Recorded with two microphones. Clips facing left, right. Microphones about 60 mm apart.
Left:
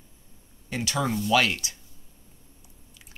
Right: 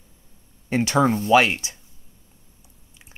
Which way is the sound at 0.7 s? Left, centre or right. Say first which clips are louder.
Right 9 dB; right.